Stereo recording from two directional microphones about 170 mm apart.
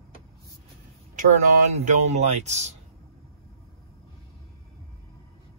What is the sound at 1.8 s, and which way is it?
Speech, 40° right (ahead or behind).